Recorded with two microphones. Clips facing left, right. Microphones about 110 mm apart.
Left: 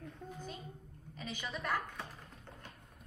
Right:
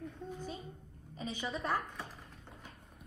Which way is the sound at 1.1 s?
25° right (ahead or behind).